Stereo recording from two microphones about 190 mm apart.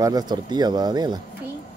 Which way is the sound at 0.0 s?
20° right (ahead or behind).